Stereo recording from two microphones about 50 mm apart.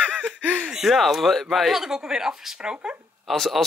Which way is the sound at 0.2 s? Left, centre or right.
Right.